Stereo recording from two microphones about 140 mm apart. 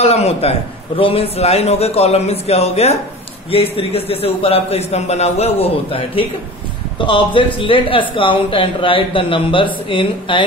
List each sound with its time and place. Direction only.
0.0 s a man's voice: 45° left (ahead or behind)